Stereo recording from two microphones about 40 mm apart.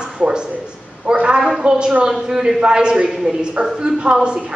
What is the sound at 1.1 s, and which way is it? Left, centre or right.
Speech, right.